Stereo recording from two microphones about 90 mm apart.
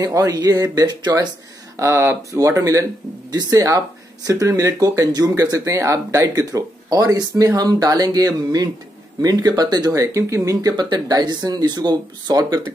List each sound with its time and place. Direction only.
0.0 s speech: 40° right (ahead or behind)
1.8 s speech: 30° right (ahead or behind); by 12.7 s 50° right (ahead or behind)